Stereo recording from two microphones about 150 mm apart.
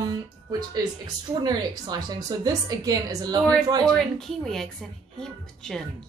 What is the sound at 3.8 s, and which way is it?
Speech, centre (ahead or behind).